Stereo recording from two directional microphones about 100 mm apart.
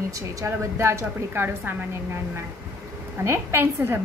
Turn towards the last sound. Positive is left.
turn(degrees=-25)  # may be behind; listen again after turning